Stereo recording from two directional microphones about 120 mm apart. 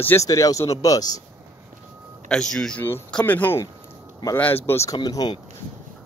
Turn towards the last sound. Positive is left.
turn(degrees=35)  # may be behind; listen again after turning